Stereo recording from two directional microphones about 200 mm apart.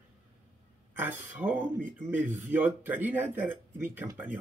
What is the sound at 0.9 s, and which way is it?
A man's voice, 10° right (ahead or behind).